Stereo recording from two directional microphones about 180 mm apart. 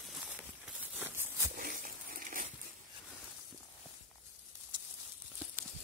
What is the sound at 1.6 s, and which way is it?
Dog, 50° right (ahead or behind).